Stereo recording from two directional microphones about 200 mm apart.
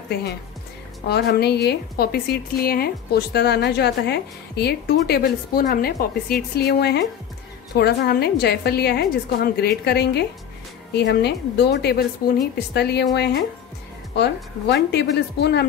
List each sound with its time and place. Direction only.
1.0 s a woman's voice: 55° left (ahead or behind)